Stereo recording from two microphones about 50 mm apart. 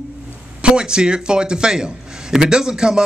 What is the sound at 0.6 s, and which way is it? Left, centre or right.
A man's voice, centre.